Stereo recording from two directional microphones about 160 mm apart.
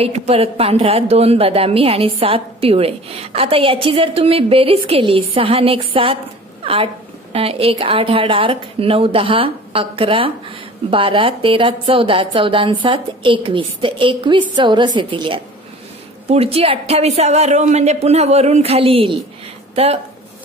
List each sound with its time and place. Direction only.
0.0 s a woman's voice: 40° right (ahead or behind)